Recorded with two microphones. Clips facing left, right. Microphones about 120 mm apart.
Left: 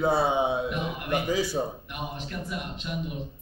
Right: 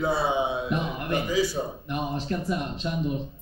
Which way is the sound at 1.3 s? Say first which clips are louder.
Right 3 dB; 60° left (ahead or behind).